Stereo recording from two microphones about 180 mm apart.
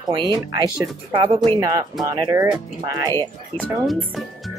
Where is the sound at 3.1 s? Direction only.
10° left (ahead or behind).